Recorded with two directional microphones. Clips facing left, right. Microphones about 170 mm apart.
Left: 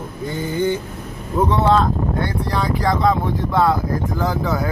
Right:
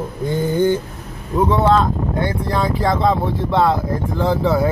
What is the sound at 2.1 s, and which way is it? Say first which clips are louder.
Speech: right 2 dB; 20° right (ahead or behind).